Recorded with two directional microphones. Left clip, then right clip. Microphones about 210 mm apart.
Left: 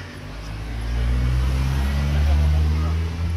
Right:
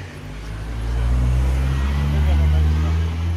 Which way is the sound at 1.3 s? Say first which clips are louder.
Right 1 dB; 45° left (ahead or behind).